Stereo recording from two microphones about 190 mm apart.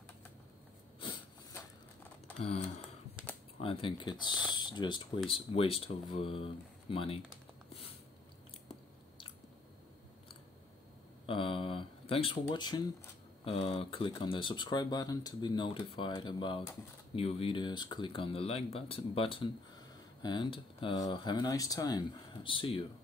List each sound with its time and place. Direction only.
3.5 s speech: 30° left (ahead or behind)
11.2 s speech: 30° left (ahead or behind)